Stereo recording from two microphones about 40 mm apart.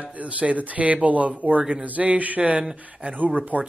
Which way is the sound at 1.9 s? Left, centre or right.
Right.